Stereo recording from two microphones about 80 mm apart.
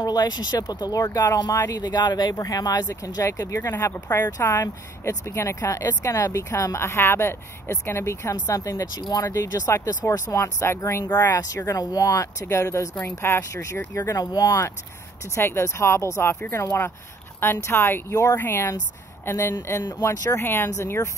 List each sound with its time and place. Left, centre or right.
0.0 s speech: left
11.3 s speech: left
15.3 s speech: left